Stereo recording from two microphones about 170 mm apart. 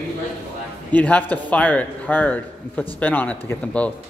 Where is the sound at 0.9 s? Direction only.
10° left (ahead or behind).